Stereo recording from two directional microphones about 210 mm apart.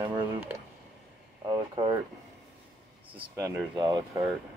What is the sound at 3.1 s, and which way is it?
Speech, 25° right (ahead or behind).